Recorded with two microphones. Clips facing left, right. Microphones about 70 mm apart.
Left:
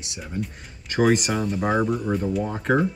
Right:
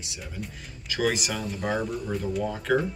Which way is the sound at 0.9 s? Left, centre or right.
Left.